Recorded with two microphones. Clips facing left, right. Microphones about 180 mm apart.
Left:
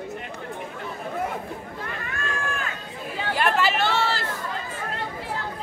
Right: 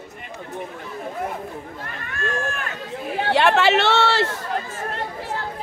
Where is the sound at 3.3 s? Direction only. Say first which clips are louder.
Right 6 dB; 75° right (ahead or behind).